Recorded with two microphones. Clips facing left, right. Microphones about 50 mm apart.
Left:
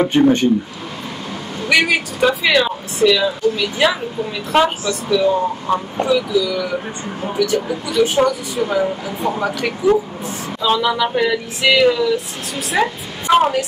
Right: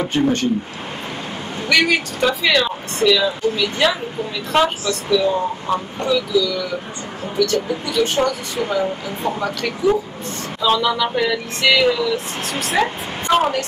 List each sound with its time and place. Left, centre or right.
0.0 s speech: left
1.7 s a woman's voice: centre